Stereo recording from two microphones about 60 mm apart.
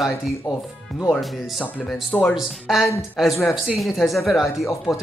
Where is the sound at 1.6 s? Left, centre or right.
Left.